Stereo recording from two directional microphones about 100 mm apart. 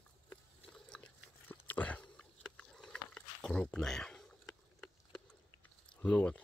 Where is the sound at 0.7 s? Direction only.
10° left (ahead or behind).